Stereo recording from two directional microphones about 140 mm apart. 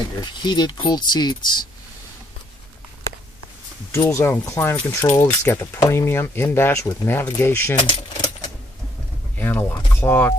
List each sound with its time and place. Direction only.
0.2 s speech: 30° left (ahead or behind)
3.9 s speech: 20° left (ahead or behind)
7.8 s keys jangling: 35° left (ahead or behind)
9.4 s speech: 15° left (ahead or behind)